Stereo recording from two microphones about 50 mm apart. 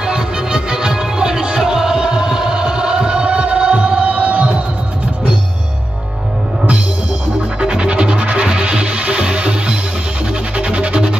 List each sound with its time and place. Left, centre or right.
0.0 s music: centre
7.6 s music: centre